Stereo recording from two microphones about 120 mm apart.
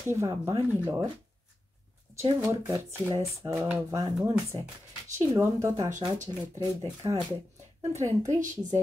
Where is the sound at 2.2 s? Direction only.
25° right (ahead or behind).